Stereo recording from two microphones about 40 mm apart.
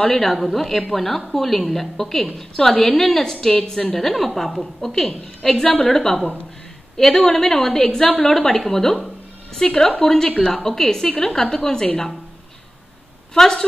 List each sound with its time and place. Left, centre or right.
0.2 s a woman's voice: centre
13.3 s a woman's voice: centre